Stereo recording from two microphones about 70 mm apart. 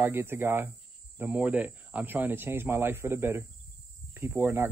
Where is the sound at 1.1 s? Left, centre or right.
Right.